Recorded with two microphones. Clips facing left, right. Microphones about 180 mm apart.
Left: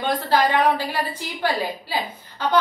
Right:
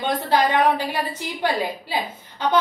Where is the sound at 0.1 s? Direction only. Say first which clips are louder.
Even; 25° right (ahead or behind).